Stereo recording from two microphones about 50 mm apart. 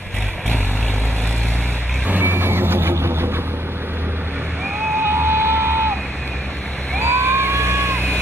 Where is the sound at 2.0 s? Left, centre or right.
Right.